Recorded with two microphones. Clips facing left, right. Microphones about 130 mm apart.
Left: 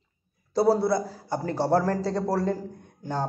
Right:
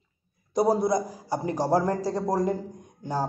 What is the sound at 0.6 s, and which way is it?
A woman's voice, 20° right (ahead or behind).